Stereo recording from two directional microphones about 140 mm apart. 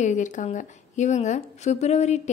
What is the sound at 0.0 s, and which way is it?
A woman's voice, 60° left (ahead or behind).